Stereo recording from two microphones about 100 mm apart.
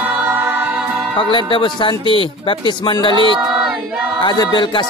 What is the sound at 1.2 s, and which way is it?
Speech, 55° left (ahead or behind).